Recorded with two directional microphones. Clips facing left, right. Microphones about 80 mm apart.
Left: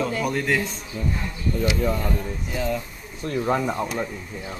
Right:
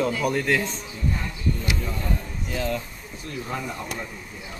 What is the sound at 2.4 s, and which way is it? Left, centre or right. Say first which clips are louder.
Speech: even; centre.